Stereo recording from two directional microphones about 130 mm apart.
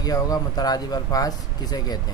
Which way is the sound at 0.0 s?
30° left (ahead or behind).